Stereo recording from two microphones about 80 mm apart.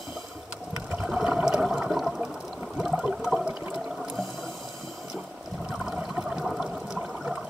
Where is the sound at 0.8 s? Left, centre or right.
Centre.